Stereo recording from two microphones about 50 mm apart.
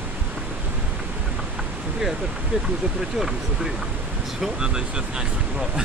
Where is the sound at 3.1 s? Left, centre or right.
Centre.